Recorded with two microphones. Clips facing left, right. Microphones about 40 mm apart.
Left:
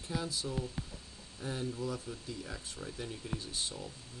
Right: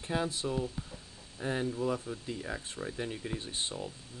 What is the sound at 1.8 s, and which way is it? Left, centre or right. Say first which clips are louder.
Speech: right 6 dB; right.